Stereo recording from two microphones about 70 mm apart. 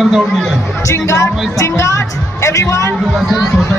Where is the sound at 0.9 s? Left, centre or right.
Left.